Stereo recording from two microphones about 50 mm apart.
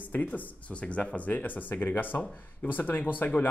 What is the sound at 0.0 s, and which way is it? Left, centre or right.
Speech, left.